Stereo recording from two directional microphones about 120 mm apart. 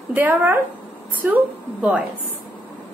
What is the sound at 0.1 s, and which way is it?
A woman's voice, 15° right (ahead or behind).